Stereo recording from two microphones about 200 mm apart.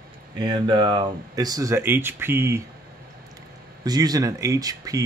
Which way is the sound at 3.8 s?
20° right (ahead or behind).